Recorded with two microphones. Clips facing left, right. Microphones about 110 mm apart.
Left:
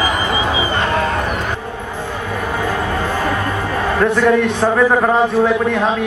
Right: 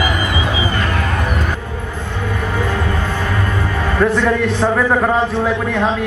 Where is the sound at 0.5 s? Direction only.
30° left (ahead or behind).